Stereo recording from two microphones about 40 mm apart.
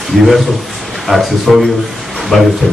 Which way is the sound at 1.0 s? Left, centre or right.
Centre.